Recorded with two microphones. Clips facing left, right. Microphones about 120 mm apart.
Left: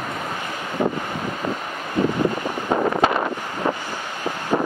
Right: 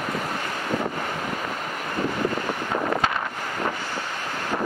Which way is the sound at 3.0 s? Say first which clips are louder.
Left 6 dB; 30° left (ahead or behind).